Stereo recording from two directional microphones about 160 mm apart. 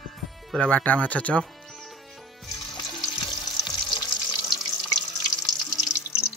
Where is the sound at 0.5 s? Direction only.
5° left (ahead or behind).